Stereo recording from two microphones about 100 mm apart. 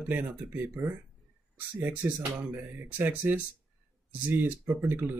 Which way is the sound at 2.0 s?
20° right (ahead or behind).